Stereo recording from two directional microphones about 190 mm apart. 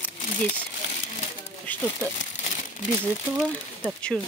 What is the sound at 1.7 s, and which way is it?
Crumpling, 10° left (ahead or behind).